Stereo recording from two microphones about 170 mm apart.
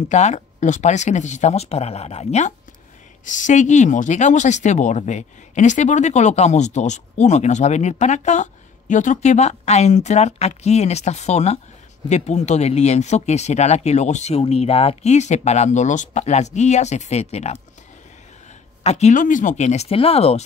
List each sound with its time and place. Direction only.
0.1 s speech: 45° left (ahead or behind)
18.8 s speech: 40° left (ahead or behind)